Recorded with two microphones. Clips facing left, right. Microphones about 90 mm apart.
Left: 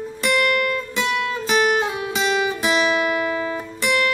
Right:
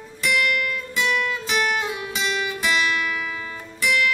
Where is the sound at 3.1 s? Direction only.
50° left (ahead or behind); by 4.1 s 35° left (ahead or behind).